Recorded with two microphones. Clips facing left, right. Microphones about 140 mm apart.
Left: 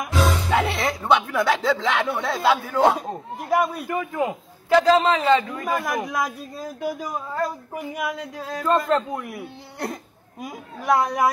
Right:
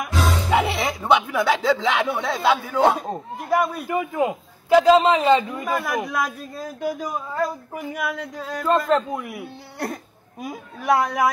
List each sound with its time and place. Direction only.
0.5 s speech: 5° right (ahead or behind)
3.8 s a man's voice: 15° right (ahead or behind)
6.0 s speech: 10° left (ahead or behind)
8.6 s speech: 5° right (ahead or behind)